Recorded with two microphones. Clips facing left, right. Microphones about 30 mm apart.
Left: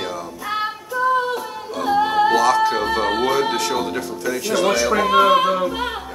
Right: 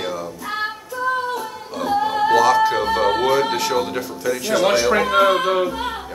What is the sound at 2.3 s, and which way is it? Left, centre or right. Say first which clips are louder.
Speech: right 1 dB; centre.